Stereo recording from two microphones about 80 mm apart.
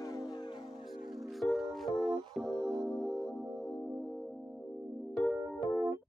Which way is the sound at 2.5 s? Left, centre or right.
Right.